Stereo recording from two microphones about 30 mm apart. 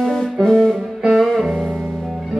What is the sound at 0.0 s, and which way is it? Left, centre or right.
Music, centre.